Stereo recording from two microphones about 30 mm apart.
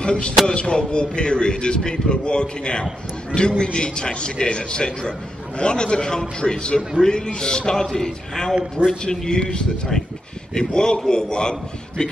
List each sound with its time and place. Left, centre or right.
0.0 s a man's voice: left